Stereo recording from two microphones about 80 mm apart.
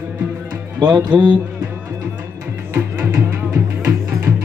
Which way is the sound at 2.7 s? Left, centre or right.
Right.